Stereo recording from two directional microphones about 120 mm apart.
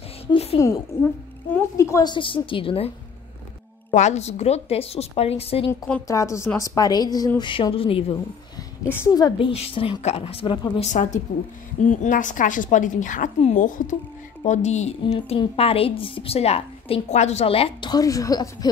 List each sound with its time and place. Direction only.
0.6 s a woman's voice: 25° left (ahead or behind)
1.8 s a woman's voice: 25° left (ahead or behind)
2.1 s a woman's voice: 45° left (ahead or behind)
3.9 s a woman's voice: 70° left (ahead or behind); by 5.7 s 55° left (ahead or behind)
6.0 s a woman's voice: 25° left (ahead or behind); by 8.2 s 50° left (ahead or behind)
8.8 s a woman's voice: 20° left (ahead or behind)
9.1 s a woman's voice: 35° left (ahead or behind)
9.5 s a woman's voice: 55° left (ahead or behind)
10.8 s a woman's voice: 85° left
14.4 s speech: 75° left (ahead or behind)
15.1 s a woman's voice: 50° left (ahead or behind); by 18.7 s 30° left (ahead or behind)